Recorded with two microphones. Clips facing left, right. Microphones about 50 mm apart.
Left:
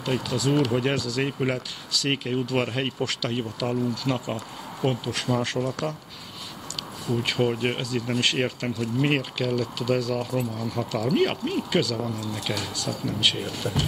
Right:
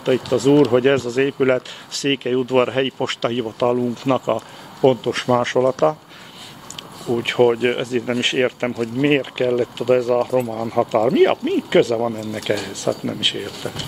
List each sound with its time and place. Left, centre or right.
0.0 s speech: right
7.2 s speech: right